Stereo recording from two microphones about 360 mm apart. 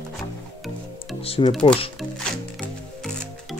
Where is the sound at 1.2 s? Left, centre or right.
Centre.